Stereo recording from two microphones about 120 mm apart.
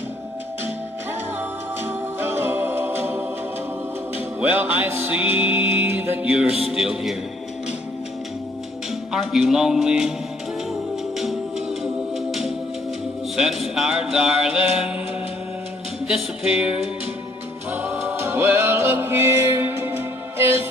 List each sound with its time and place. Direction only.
1.8 s music: 20° right (ahead or behind)
4.4 s music: 15° right (ahead or behind)
6.3 s speech: 5° right (ahead or behind)
9.1 s speech: centre (ahead or behind)
11.1 s music: 5° right (ahead or behind)
13.7 s music: 5° right (ahead or behind)
16.1 s music: 10° right (ahead or behind)